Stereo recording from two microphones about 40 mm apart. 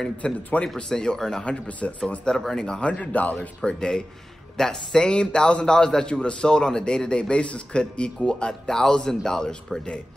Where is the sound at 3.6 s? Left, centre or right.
Left.